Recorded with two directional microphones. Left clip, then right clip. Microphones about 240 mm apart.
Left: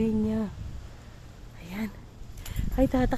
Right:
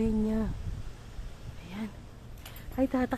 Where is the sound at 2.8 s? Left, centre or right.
Centre.